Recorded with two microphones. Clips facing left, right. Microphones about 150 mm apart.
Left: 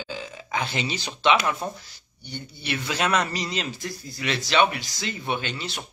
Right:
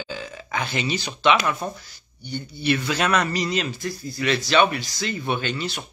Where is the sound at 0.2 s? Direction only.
25° left (ahead or behind).